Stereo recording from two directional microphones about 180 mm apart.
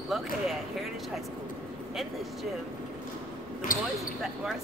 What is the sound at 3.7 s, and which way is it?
Speech, 50° left (ahead or behind).